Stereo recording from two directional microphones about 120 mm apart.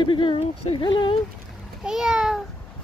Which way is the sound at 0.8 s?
40° left (ahead or behind).